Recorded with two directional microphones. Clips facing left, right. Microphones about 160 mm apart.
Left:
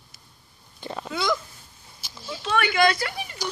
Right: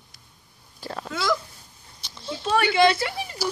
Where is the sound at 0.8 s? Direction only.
Centre (ahead or behind).